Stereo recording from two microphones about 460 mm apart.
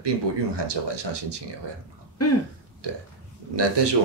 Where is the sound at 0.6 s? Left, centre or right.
Right.